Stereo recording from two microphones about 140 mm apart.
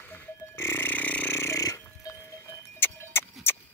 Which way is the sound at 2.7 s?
15° left (ahead or behind).